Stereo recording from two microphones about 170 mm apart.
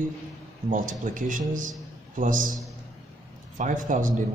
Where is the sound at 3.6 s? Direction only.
50° right (ahead or behind).